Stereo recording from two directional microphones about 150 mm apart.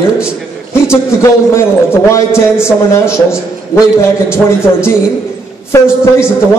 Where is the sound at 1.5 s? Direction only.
15° left (ahead or behind).